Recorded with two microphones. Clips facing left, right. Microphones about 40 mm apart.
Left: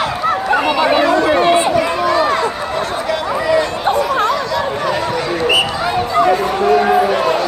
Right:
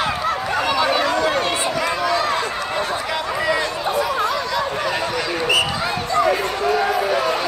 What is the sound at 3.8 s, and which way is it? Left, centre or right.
Chatter, left.